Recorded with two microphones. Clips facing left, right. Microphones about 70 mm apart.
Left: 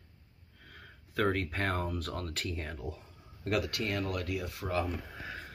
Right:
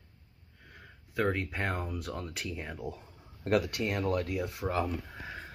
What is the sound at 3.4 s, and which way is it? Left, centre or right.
Speech, right.